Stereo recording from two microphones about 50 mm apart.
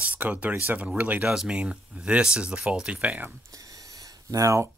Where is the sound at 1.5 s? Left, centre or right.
Right.